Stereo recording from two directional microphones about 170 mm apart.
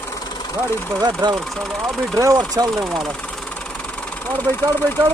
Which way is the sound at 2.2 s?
20° right (ahead or behind).